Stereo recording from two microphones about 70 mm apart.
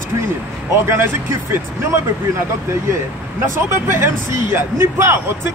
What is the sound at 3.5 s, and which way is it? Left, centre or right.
Speech, right.